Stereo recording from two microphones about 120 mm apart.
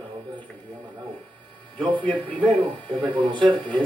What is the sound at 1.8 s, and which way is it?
Speech, 45° right (ahead or behind).